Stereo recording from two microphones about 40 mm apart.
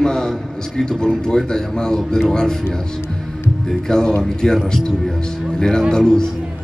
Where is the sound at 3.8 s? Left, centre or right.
Centre.